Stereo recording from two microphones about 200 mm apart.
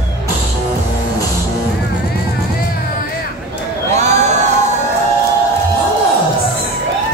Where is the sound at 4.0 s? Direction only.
35° right (ahead or behind).